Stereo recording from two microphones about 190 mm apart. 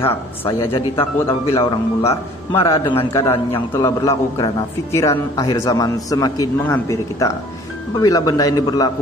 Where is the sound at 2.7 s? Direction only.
15° left (ahead or behind).